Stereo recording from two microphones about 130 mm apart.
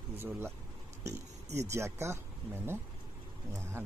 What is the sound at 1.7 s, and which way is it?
Speech, 20° right (ahead or behind).